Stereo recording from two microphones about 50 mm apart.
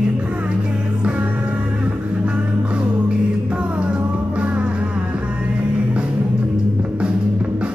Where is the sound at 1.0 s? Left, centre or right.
Right.